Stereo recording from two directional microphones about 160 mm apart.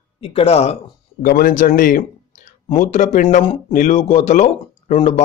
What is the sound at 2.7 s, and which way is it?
Speech, 50° left (ahead or behind).